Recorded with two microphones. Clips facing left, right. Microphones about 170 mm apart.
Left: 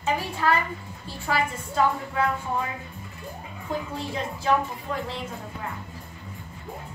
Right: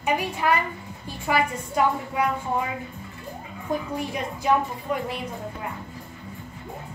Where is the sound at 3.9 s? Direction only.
15° right (ahead or behind).